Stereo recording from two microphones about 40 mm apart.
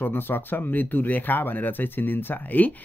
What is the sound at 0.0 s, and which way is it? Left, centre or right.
Speech, left.